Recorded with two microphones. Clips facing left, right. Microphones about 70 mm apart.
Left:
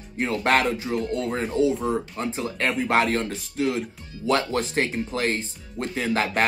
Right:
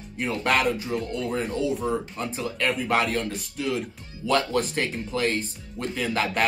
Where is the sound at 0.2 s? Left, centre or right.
Left.